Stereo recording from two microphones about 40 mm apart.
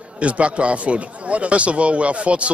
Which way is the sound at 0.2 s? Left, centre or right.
Right.